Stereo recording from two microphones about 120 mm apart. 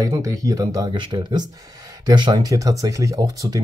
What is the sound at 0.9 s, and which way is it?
Speech, 45° right (ahead or behind).